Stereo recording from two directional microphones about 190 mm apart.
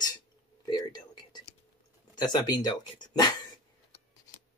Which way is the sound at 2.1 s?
20° left (ahead or behind).